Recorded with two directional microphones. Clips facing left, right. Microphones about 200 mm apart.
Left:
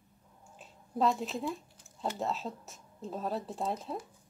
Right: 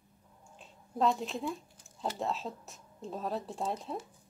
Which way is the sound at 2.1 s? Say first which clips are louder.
Even; centre (ahead or behind).